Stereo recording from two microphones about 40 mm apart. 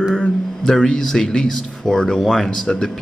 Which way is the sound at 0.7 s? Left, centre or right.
Centre.